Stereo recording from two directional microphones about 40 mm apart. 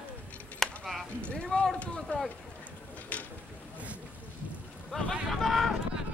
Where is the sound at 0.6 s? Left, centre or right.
Centre.